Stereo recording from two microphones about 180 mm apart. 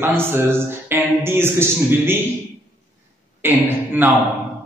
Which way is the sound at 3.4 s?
10° right (ahead or behind).